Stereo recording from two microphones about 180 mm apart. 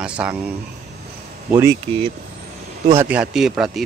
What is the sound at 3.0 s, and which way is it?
Speech, 5° right (ahead or behind).